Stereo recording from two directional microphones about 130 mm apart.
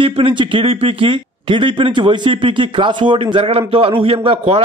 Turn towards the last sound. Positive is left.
turn(degrees=-45)  # may be behind; listen again after turning